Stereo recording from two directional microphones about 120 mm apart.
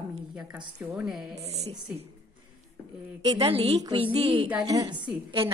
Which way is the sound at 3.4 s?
60° right (ahead or behind).